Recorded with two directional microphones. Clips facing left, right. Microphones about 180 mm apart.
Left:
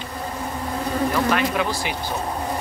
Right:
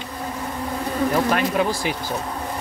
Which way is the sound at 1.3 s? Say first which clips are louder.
Right 1 dB; 40° right (ahead or behind).